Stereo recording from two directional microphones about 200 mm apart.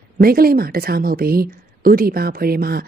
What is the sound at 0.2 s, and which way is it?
Speech, 50° right (ahead or behind).